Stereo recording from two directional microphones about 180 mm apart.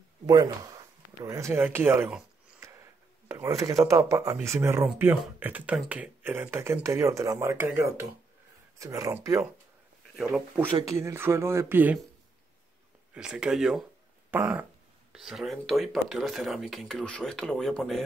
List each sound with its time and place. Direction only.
0.3 s speech: 20° right (ahead or behind)
1.3 s a sound: 15° right (ahead or behind)
3.9 s speech: 15° right (ahead or behind)
10.1 s speech: 5° right (ahead or behind)
10.8 s speech: 15° right (ahead or behind)
13.1 s speech: 5° right (ahead or behind)